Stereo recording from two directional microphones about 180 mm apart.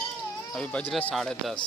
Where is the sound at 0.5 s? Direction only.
5° left (ahead or behind).